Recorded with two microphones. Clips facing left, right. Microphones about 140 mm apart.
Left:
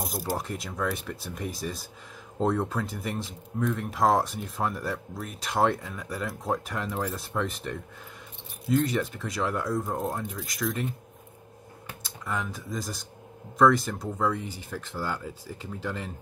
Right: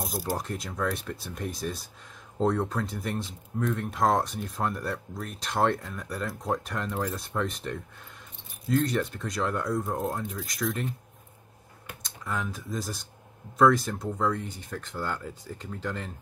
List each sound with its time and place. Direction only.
0.1 s speech: 5° left (ahead or behind)
12.0 s speech: centre (ahead or behind)